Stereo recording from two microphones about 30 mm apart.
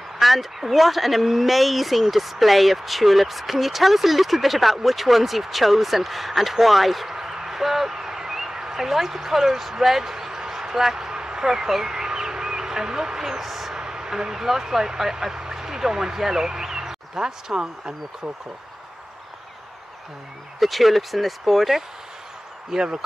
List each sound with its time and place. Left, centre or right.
0.2 s speech: centre
7.2 s a sound: centre
11.4 s speech: centre
13.4 s speech: centre
13.7 s speech: right
20.5 s speech: centre
22.7 s speech: centre